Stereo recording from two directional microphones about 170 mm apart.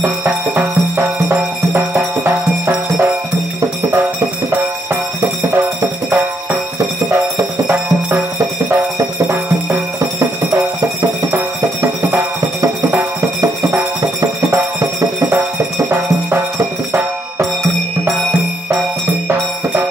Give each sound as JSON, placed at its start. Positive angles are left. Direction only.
{"t": 0.0, "sound": "music", "side_deg": -10}
{"t": 7.3, "sound": "music", "side_deg": -15}
{"t": 13.4, "sound": "music", "side_deg": -20}